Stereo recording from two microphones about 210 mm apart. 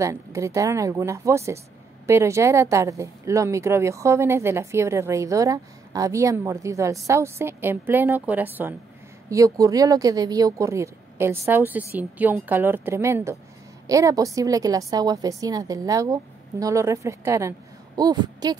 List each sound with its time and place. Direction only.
0.0 s speech: 15° right (ahead or behind)